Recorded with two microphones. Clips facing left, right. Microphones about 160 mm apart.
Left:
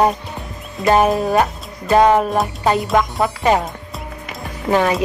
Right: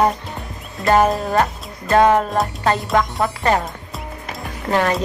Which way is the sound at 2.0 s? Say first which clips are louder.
Left 1 dB; 15° left (ahead or behind).